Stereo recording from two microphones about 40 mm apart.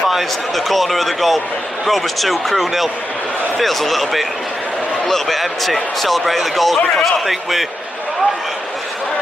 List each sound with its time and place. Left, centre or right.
0.6 s speech: centre